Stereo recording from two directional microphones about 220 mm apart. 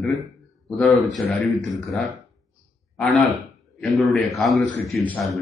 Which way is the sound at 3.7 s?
Centre (ahead or behind).